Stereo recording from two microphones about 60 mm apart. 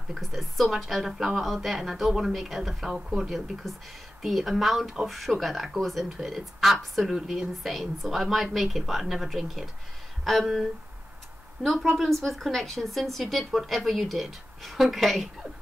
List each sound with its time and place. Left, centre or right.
0.1 s speech: centre